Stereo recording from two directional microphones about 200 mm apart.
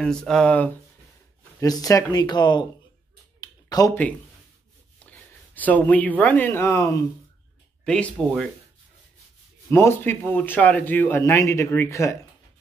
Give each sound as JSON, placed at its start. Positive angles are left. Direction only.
{"t": 0.0, "sound": "speech", "side_deg": 5}
{"t": 1.6, "sound": "speech", "side_deg": 15}
{"t": 3.3, "sound": "a sound", "side_deg": 20}
{"t": 5.0, "sound": "speech", "side_deg": 10}
{"t": 9.7, "sound": "speech", "side_deg": 10}